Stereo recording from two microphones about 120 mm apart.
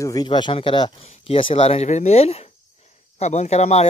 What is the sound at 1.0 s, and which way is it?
Speech, 55° left (ahead or behind).